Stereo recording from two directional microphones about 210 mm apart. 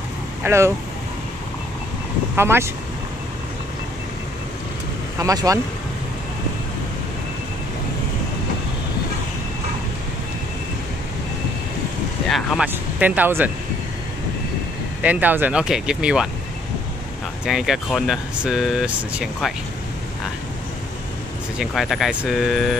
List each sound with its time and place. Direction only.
0.4 s speech: 10° right (ahead or behind)
2.3 s speech: 10° right (ahead or behind)
5.2 s speech: 15° right (ahead or behind)
12.3 s speech: centre (ahead or behind)
15.0 s speech: 5° right (ahead or behind)
17.5 s speech: centre (ahead or behind)
21.5 s speech: centre (ahead or behind)